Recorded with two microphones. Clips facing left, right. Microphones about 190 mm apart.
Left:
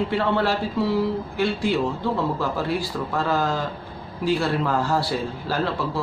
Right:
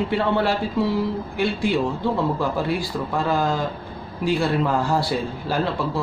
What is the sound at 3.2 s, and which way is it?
Speech, 15° right (ahead or behind).